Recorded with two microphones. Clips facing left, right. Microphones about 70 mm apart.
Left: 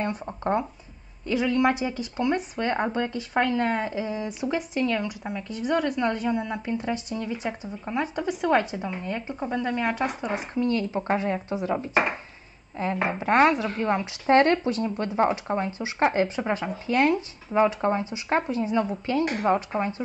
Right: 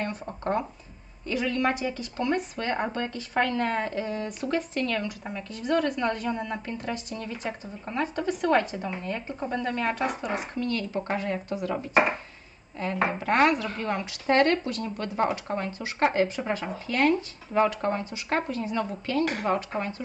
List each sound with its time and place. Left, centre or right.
0.0 s speech: left
10.3 s speech: left